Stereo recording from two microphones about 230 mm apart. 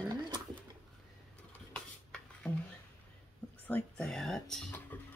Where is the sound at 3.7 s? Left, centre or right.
Centre.